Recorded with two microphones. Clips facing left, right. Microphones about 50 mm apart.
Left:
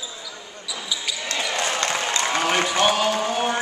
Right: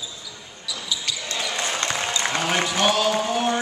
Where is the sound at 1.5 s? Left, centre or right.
Left.